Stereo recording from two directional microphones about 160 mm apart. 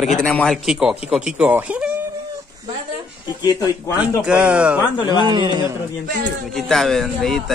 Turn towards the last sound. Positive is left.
turn(degrees=0)  # may be behind; listen again after turning